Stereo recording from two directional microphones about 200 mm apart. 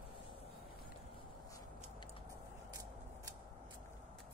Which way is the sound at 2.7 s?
20° right (ahead or behind).